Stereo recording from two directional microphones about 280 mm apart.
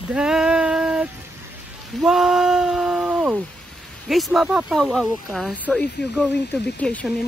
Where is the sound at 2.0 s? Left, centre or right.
Centre.